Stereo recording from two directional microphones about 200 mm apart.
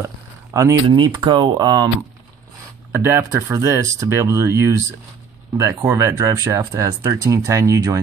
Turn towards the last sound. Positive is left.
turn(degrees=-15)  # may be behind; listen again after turning